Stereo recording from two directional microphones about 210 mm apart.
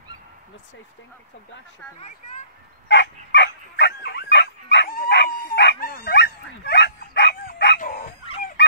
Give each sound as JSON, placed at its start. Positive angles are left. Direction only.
{"t": 2.0, "sound": "speech", "side_deg": 35}
{"t": 2.9, "sound": "dog", "side_deg": 55}